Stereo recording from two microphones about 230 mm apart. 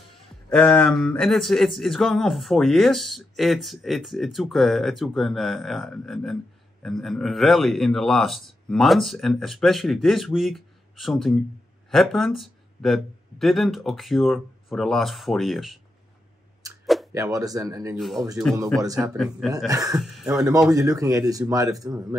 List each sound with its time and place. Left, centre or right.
0.5 s speech: centre
16.8 s a sound: centre
17.1 s a man's voice: centre
17.9 s speech: centre
19.7 s a man's voice: centre